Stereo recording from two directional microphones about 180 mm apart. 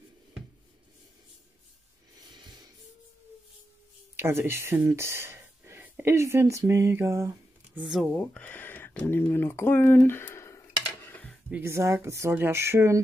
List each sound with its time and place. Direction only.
2.3 s music: 25° right (ahead or behind)
4.2 s speech: 15° right (ahead or behind)
8.1 s speech: 10° left (ahead or behind)
11.1 s a sound: 10° left (ahead or behind)
11.5 s speech: 15° right (ahead or behind)